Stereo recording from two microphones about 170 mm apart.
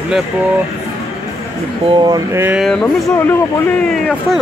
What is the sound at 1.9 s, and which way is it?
Speech, 20° right (ahead or behind).